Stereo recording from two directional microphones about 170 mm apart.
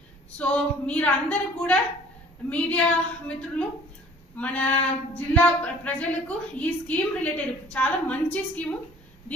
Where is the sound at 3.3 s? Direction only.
5° left (ahead or behind).